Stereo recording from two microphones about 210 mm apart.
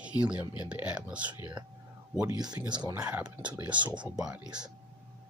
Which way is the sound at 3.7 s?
20° right (ahead or behind).